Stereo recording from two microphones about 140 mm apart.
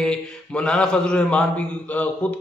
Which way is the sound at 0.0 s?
5° left (ahead or behind).